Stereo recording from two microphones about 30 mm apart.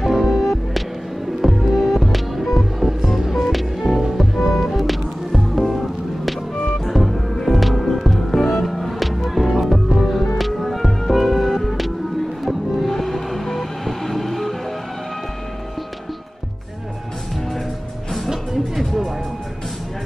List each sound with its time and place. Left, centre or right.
0.0 s music: centre
4.4 s music: centre
4.7 s music: centre
6.9 s music: centre
8.4 s music: centre
8.6 s music: centre
18.3 s music: centre